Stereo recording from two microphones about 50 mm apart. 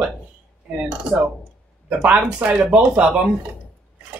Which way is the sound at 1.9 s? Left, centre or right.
Right.